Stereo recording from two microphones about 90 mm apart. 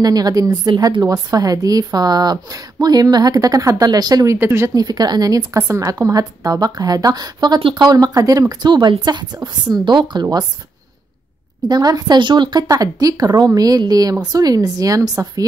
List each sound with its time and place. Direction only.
0.0 s a woman's voice: 45° right (ahead or behind)
4.4 s speech: 30° right (ahead or behind)
4.7 s a woman's voice: 45° right (ahead or behind)
11.7 s a woman's voice: 45° right (ahead or behind)